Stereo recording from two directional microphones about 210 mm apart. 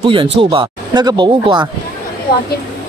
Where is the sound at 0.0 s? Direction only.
25° right (ahead or behind).